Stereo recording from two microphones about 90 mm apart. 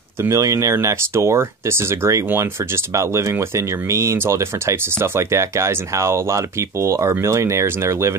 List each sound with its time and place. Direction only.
0.2 s speech: 35° right (ahead or behind)